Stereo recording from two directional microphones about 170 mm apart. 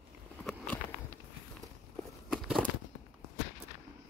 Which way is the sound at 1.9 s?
Centre (ahead or behind).